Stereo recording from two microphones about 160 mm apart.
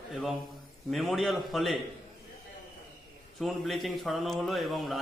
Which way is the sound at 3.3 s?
Centre (ahead or behind).